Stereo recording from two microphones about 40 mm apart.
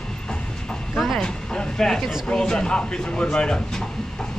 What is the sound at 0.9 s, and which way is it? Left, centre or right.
Mechanisms, centre.